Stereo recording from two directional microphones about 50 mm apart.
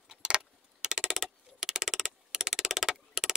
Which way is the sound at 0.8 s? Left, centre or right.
Centre.